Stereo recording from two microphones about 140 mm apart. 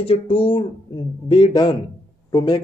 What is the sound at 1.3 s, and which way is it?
Speech, 30° left (ahead or behind).